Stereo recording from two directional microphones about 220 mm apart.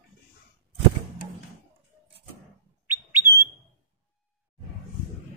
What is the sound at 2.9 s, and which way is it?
Bird, 10° right (ahead or behind).